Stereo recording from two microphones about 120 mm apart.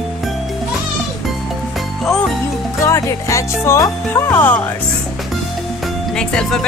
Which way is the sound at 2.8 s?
25° left (ahead or behind).